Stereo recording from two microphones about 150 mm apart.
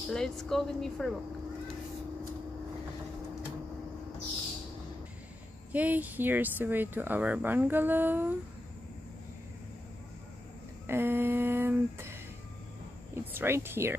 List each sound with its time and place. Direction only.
0.1 s a woman's voice: 5° left (ahead or behind)
5.7 s speech: 10° right (ahead or behind)
10.9 s speech: 15° right (ahead or behind)
13.1 s speech: 15° right (ahead or behind)